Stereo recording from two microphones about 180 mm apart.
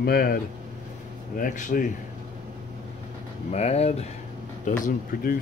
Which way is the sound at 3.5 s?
35° left (ahead or behind).